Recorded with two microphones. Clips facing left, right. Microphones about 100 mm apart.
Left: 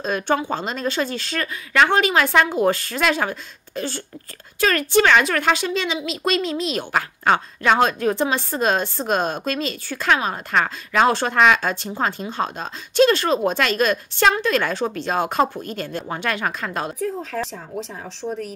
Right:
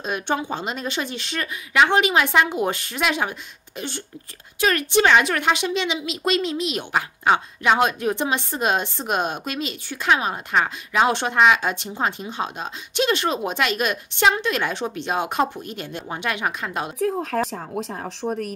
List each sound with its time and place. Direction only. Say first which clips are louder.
0.0 s a woman's voice: left 3 dB; 20° right (ahead or behind)
17.0 s speech: right 3 dB; 55° right (ahead or behind)